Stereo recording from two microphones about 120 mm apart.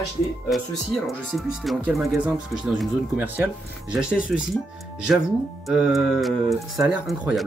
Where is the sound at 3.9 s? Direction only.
5° right (ahead or behind).